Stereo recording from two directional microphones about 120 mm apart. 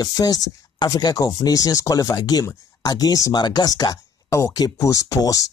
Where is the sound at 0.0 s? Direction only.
30° left (ahead or behind).